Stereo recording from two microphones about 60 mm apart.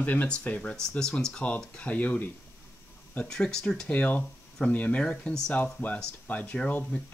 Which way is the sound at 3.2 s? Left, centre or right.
Centre.